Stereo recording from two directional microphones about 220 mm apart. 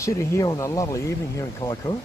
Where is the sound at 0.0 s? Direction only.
15° left (ahead or behind).